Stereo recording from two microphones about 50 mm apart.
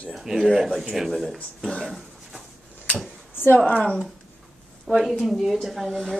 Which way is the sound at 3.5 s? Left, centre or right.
Left.